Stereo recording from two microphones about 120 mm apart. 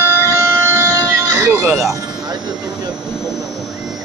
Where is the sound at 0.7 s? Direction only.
20° right (ahead or behind).